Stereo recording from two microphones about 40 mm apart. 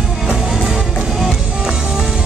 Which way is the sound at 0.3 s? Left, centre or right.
Centre.